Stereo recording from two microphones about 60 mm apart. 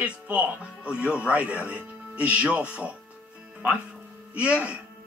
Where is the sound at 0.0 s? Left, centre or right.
Right.